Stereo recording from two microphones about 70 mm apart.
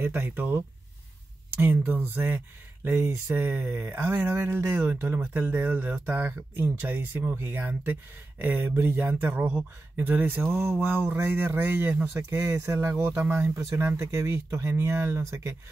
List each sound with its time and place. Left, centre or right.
0.0 s speech: right